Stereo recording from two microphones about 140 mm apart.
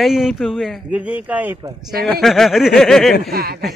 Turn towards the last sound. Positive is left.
turn(degrees=-90)